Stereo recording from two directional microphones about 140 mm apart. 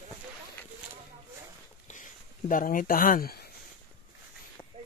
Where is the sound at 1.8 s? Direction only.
65° left (ahead or behind); by 3.4 s 90° left.